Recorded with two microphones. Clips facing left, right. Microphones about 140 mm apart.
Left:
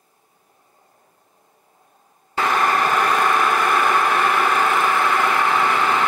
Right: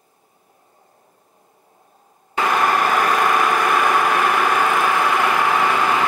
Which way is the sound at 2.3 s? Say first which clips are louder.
Right 1 dB; 5° right (ahead or behind).